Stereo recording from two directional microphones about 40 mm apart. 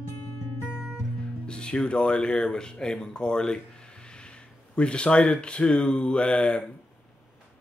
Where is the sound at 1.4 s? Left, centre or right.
Left.